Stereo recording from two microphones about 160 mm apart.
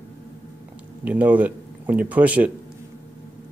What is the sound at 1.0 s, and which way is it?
Speech, 10° right (ahead or behind).